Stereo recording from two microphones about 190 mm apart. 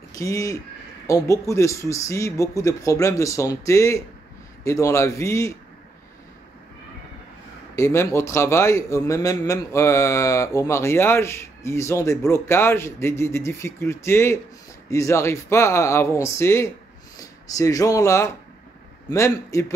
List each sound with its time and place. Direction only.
0.1 s a man's voice: 15° left (ahead or behind)
7.7 s a man's voice: 15° left (ahead or behind)